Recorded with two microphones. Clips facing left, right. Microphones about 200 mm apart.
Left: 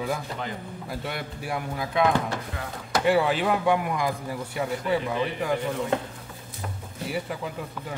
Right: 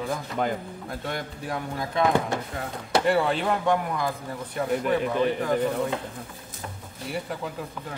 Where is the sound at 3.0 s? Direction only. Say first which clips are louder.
Left 3 dB; 5° left (ahead or behind).